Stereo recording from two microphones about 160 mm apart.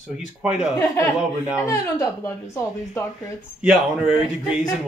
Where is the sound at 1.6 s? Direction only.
15° left (ahead or behind).